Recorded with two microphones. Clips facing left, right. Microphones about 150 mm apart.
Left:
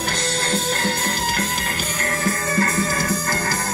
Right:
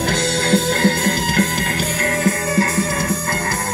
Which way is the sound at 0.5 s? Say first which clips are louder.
Right 8 dB; 90° right.